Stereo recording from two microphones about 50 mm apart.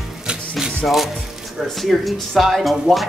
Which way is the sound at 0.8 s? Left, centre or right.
Centre.